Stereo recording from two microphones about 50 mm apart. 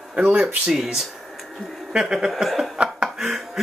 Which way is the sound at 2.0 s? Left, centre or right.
Centre.